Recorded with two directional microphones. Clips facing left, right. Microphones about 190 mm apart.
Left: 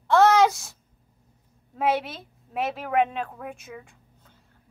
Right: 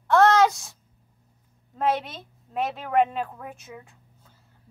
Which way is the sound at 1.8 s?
5° left (ahead or behind).